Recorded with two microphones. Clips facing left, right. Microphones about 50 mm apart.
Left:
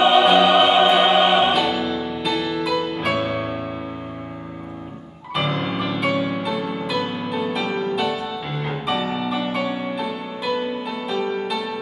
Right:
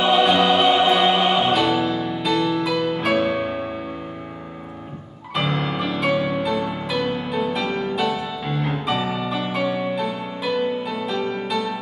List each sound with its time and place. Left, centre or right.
0.2 s music: centre
5.3 s music: centre